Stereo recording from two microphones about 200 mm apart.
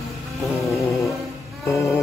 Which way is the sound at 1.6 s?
15° left (ahead or behind).